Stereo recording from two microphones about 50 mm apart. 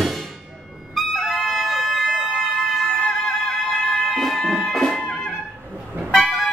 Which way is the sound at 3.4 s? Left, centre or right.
Centre.